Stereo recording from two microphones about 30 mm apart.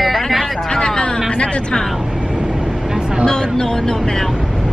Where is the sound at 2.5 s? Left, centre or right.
Centre.